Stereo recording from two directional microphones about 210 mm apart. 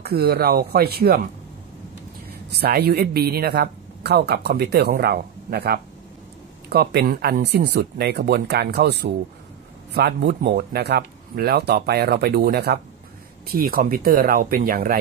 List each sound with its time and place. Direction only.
0.0 s speech: 50° right (ahead or behind)
2.6 s speech: 50° right (ahead or behind)